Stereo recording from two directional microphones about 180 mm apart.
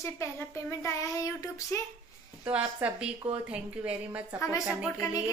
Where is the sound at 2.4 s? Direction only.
10° right (ahead or behind).